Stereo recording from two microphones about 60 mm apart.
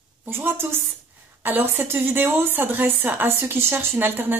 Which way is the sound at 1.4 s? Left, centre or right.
Right.